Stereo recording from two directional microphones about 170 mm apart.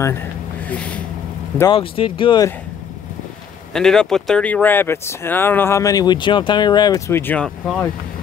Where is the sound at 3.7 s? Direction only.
5° left (ahead or behind).